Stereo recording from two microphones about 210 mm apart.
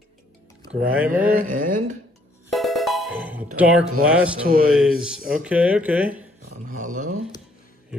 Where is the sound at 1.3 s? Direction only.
40° right (ahead or behind).